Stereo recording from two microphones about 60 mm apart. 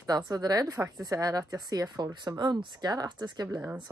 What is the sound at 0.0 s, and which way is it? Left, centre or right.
Speech, right.